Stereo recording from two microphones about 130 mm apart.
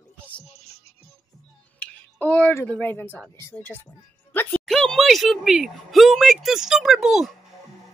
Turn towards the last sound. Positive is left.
turn(degrees=0)  # may be behind; listen again after turning